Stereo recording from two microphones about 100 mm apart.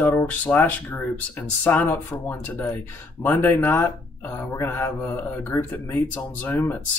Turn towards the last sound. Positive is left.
turn(degrees=20)  # may be behind; listen again after turning